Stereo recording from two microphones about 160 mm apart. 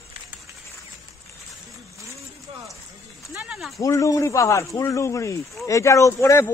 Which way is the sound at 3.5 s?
Centre (ahead or behind).